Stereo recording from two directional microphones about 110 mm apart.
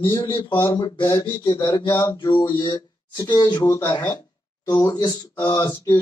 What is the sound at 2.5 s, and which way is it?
Speech, 45° left (ahead or behind).